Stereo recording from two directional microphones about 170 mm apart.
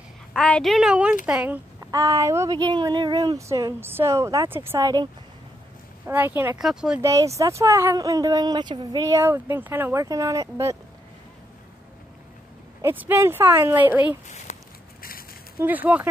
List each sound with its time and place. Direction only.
0.3 s a woman's voice: 5° left (ahead or behind)
1.9 s speech: 20° right (ahead or behind)
6.0 s speech: 10° right (ahead or behind)
7.0 s speech: 15° right (ahead or behind)
12.8 s speech: 10° right (ahead or behind)
14.5 s a sound: 40° left (ahead or behind)
15.0 s a sound: 60° left (ahead or behind)
15.6 s speech: 10° right (ahead or behind)